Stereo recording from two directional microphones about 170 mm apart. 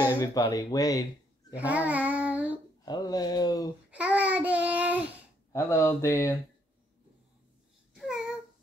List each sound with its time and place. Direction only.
0.2 s speech: 20° left (ahead or behind)
1.5 s a child's voice: 10° right (ahead or behind)
2.8 s speech: 25° left (ahead or behind)
3.9 s child singing: 5° right (ahead or behind)
5.5 s speech: 15° left (ahead or behind)
7.9 s babbling: centre (ahead or behind)